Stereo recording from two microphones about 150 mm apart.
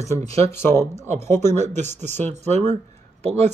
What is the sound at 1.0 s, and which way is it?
Speech, 50° right (ahead or behind).